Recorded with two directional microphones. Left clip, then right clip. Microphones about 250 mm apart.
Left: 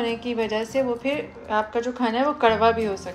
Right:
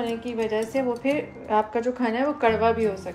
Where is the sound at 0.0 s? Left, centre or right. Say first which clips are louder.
Left 2 dB; centre.